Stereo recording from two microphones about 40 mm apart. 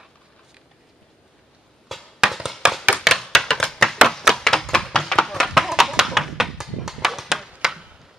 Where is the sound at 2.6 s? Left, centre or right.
Centre.